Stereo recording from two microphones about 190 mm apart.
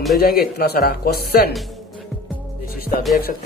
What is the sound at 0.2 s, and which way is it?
A man's voice, 50° left (ahead or behind).